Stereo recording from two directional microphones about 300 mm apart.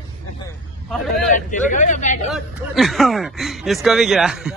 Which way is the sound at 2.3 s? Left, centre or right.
Centre.